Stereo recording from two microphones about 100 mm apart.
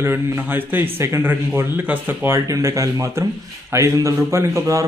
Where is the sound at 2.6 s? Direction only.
30° right (ahead or behind).